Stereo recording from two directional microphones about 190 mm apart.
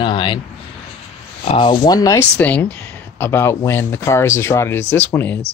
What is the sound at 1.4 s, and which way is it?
Speech, 25° left (ahead or behind).